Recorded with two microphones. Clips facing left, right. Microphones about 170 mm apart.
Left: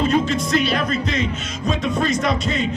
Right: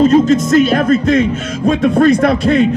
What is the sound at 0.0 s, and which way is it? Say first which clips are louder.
Speech: right 10 dB; 40° right (ahead or behind).